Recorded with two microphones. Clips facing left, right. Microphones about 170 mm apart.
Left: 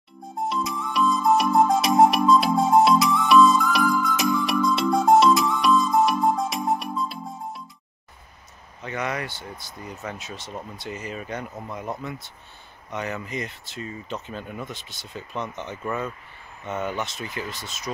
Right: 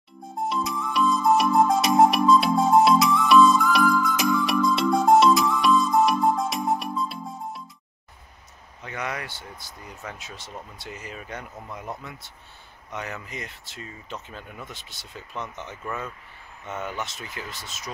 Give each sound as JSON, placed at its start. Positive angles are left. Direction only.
{"t": 0.4, "sound": "music", "side_deg": 0}
{"t": 8.8, "sound": "speech", "side_deg": -5}
{"t": 12.9, "sound": "speech", "side_deg": 0}
{"t": 15.3, "sound": "speech", "side_deg": 30}
{"t": 17.0, "sound": "speech", "side_deg": -5}